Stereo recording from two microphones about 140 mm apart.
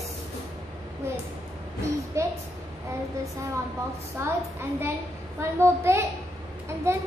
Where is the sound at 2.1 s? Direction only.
20° right (ahead or behind).